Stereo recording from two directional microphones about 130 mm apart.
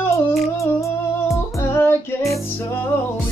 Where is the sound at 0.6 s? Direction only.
25° left (ahead or behind).